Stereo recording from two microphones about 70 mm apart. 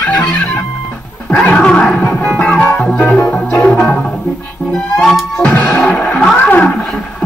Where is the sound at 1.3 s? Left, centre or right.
Centre.